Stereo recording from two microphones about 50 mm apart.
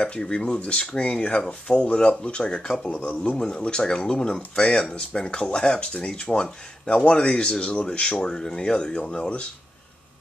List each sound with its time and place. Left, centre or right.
0.3 s speech: left